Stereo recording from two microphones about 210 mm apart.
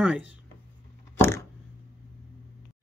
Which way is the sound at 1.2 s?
10° left (ahead or behind).